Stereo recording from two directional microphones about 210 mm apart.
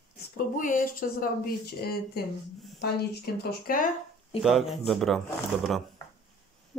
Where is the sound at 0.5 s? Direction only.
40° left (ahead or behind).